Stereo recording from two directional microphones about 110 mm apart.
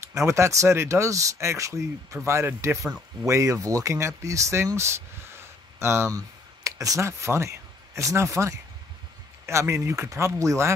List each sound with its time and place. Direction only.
0.0 s speech: 25° right (ahead or behind)